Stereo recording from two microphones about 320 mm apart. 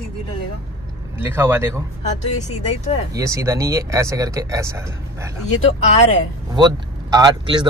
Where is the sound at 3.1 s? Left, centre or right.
Centre.